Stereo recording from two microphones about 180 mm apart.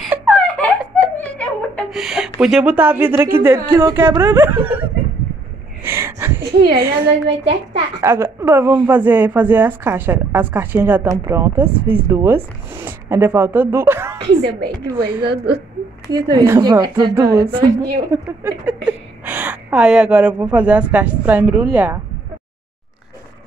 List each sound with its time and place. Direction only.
0.0 s giggle: centre (ahead or behind)
1.1 s giggle: 10° left (ahead or behind)
1.9 s a woman's voice: 5° right (ahead or behind)
5.9 s a sound: 15° right (ahead or behind)
7.0 s a woman's voice: 30° right (ahead or behind)
8.0 s a woman's voice: 15° right (ahead or behind)
14.9 s a woman's voice: 25° right (ahead or behind)
15.3 s a woman's voice: 65° right (ahead or behind)
16.1 s a woman's voice: 25° right (ahead or behind)
17.5 s a woman's voice: 30° right (ahead or behind)
18.1 s a woman's voice: 10° right (ahead or behind)